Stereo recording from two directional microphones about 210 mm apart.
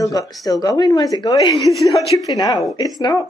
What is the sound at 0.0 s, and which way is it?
Speech, 15° left (ahead or behind).